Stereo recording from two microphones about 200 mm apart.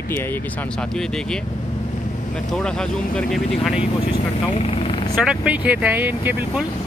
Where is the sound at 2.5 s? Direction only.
5° left (ahead or behind).